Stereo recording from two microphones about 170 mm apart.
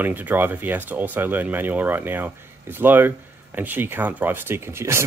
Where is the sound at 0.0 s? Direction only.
10° right (ahead or behind).